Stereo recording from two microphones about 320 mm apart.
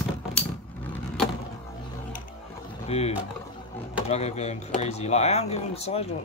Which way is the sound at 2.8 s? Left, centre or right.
Centre.